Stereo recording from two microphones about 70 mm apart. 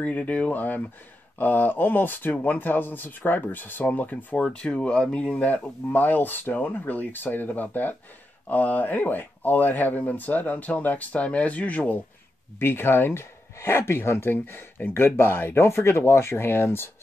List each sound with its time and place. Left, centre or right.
0.0 s speech: left
12.5 s speech: left